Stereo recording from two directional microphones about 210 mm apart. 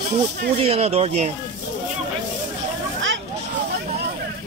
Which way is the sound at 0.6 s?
30° right (ahead or behind).